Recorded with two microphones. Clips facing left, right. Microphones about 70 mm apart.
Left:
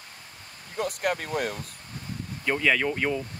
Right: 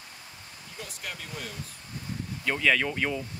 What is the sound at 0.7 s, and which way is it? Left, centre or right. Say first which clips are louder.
Speech: left 13 dB; left.